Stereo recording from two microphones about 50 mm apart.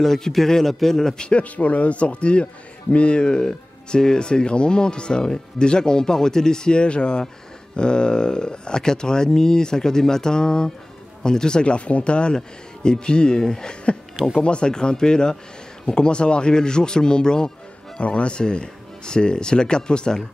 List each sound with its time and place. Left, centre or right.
0.0 s a man's voice: centre